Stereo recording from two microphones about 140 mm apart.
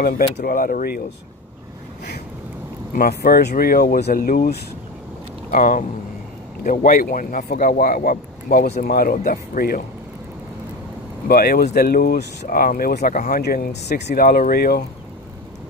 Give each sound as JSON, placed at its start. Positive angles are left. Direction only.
{"t": 0.0, "sound": "speech", "side_deg": 90}
{"t": 3.0, "sound": "speech", "side_deg": 90}
{"t": 5.5, "sound": "speech", "side_deg": 70}
{"t": 11.2, "sound": "speech", "side_deg": 90}